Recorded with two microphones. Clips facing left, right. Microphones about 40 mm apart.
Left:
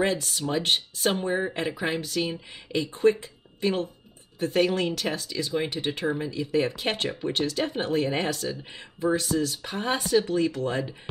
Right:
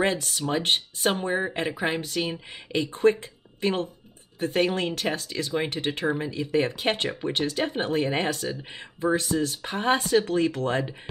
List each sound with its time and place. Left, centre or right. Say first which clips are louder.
0.0 s speech: right 1 dB; right
0.4 s speech: right 1 dB; right
1.1 s speech: even; right
2.0 s speech: even; right
6.0 s speech: right 1 dB; right
6.3 s speech: right 1 dB; right